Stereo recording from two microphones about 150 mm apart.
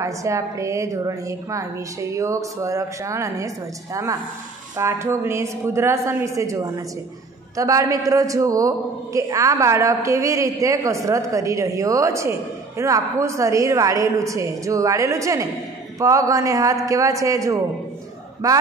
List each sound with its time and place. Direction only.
0.0 s a man's voice: 20° right (ahead or behind)